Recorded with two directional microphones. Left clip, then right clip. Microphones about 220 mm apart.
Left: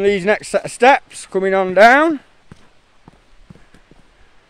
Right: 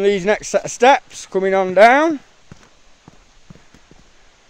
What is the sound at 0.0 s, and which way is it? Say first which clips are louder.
Speech: left 1 dB; 10° left (ahead or behind).